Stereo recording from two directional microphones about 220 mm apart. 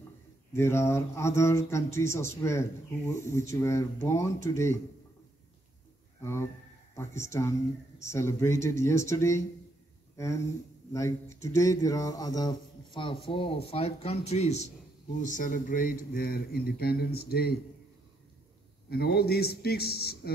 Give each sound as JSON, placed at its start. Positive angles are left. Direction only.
{"t": 0.5, "sound": "speech", "side_deg": 10}
{"t": 7.0, "sound": "speech", "side_deg": 10}
{"t": 18.9, "sound": "a man's voice", "side_deg": 45}